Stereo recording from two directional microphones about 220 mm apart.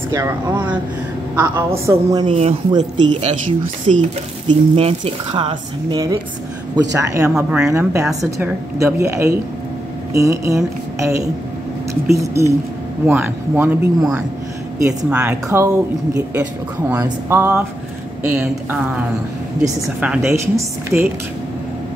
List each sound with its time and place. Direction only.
0.1 s a woman's voice: 10° right (ahead or behind)
2.2 s speech: 30° right (ahead or behind); by 7.3 s 15° right (ahead or behind)
7.3 s speech: 5° right (ahead or behind)
7.7 s a woman's voice: 15° right (ahead or behind)
20.0 s speech: 5° right (ahead or behind)